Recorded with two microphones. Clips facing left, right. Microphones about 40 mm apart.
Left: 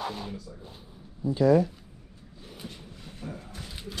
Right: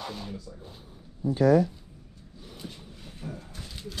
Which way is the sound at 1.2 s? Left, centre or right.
Right.